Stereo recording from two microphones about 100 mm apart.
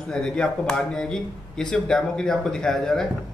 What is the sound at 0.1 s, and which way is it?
Speech, 10° left (ahead or behind).